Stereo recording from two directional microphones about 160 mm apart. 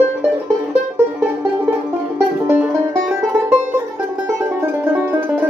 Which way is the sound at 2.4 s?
10° right (ahead or behind).